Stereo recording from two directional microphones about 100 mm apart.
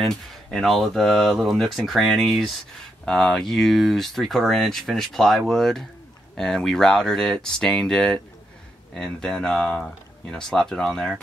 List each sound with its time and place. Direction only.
0.0 s speech: 5° left (ahead or behind)